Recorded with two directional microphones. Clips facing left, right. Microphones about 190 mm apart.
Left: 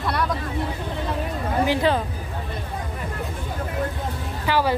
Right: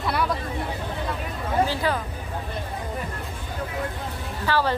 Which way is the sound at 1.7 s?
25° left (ahead or behind).